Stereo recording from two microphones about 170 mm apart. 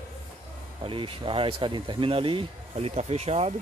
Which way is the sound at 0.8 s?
30° right (ahead or behind).